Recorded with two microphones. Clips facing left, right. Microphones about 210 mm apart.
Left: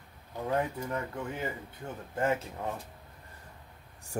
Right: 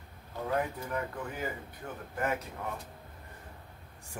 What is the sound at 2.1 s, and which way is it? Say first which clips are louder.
Speech: left 4 dB; 25° left (ahead or behind).